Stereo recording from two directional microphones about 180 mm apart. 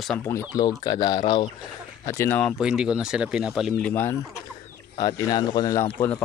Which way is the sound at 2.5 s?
5° right (ahead or behind).